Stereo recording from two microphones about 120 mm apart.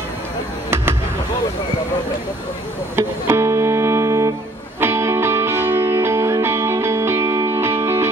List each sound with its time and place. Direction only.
3.0 s music: 20° right (ahead or behind)